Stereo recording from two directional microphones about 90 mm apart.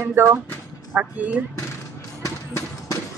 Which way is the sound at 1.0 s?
15° right (ahead or behind).